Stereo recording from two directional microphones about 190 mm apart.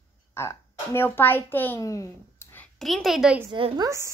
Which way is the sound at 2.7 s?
Centre (ahead or behind).